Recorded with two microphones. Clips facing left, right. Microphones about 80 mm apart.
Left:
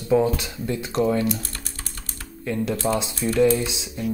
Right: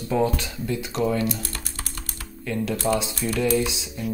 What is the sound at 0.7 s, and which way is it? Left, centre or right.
Speech, left.